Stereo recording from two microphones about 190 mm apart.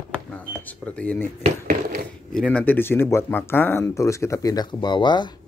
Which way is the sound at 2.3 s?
5° left (ahead or behind).